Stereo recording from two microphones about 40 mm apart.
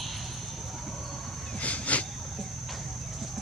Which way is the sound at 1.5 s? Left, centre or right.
Left.